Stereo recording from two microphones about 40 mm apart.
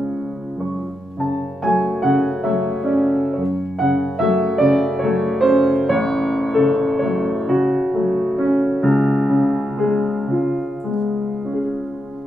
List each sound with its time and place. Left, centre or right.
1.6 s music: centre